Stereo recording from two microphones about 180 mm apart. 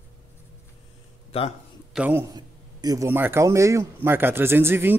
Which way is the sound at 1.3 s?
35° left (ahead or behind).